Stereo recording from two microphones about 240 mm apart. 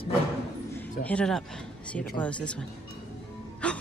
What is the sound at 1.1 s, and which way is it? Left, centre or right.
Speech, centre.